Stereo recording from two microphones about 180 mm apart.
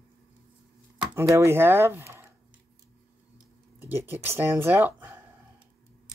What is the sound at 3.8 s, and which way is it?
Speech, 10° right (ahead or behind).